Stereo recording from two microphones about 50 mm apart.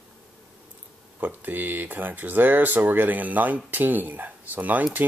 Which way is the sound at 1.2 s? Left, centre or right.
Right.